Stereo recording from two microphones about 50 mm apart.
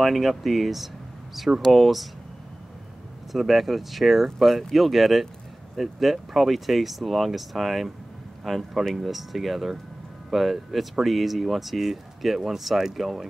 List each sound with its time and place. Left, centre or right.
0.0 s speech: centre
3.3 s speech: centre